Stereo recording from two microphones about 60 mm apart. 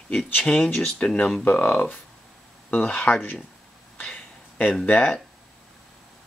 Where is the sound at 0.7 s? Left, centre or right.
Centre.